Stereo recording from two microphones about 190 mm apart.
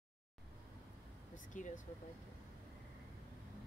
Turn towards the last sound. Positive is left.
turn(degrees=45)  # may be behind; listen again after turning